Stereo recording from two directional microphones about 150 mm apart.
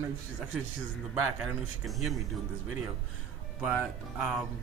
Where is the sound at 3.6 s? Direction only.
5° right (ahead or behind).